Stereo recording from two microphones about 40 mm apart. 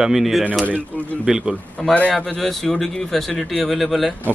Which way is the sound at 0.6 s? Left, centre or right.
Left.